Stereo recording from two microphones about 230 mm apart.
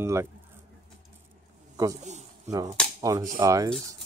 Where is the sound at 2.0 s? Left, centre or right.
Right.